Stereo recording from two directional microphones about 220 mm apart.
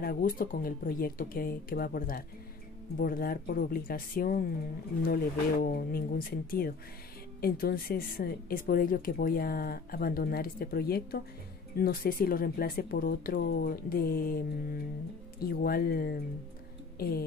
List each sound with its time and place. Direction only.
0.0 s a woman's voice: 40° left (ahead or behind)